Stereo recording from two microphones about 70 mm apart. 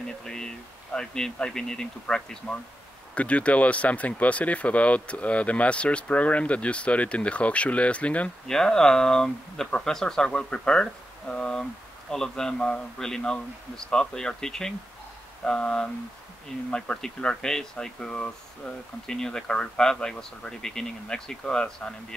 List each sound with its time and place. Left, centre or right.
0.2 s speech: centre
8.5 s speech: centre